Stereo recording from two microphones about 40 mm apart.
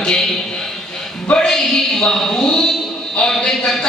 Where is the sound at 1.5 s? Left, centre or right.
Centre.